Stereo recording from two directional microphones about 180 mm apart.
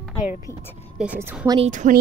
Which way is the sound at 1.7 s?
45° right (ahead or behind).